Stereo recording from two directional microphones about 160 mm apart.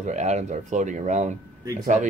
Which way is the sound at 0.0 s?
50° right (ahead or behind).